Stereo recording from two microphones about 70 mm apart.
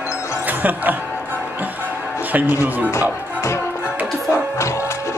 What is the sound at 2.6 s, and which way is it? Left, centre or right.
Speech, right.